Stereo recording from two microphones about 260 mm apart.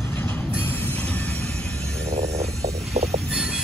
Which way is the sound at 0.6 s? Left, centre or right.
Centre.